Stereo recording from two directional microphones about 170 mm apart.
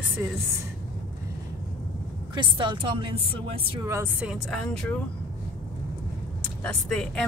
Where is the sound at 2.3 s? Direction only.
30° right (ahead or behind).